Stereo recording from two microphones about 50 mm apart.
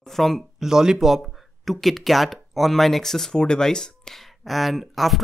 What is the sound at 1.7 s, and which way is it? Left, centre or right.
Speech, centre.